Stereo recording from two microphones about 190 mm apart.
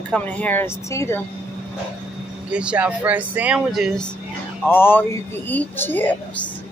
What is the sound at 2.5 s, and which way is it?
Speech, 5° right (ahead or behind).